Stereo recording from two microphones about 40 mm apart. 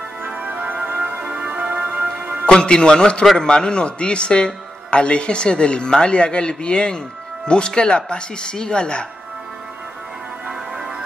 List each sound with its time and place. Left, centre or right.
0.3 s music: right
1.2 s music: right
2.6 s a man's voice: left